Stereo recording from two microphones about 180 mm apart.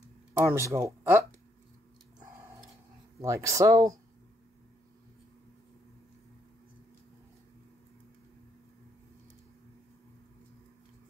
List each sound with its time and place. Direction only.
0.3 s speech: 15° right (ahead or behind)
3.2 s speech: 15° right (ahead or behind)